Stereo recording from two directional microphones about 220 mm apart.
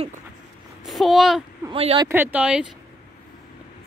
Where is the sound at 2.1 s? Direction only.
10° right (ahead or behind).